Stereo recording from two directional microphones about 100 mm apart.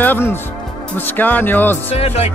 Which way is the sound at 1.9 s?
90° left.